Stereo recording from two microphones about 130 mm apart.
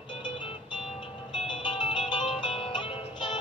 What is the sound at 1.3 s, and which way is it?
Music, 35° left (ahead or behind).